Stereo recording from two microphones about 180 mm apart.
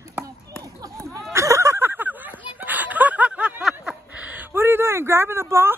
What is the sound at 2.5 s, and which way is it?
Snicker, 10° right (ahead or behind).